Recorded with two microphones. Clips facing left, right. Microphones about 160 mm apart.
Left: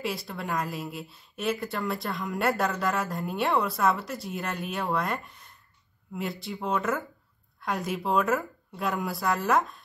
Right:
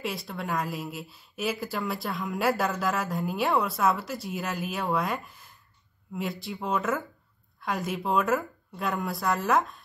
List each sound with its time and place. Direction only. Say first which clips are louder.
0.0 s speech: left 1 dB; centre (ahead or behind)